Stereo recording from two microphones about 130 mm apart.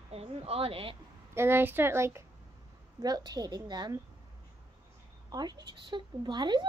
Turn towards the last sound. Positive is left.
turn(degrees=-35)  # may be behind; listen again after turning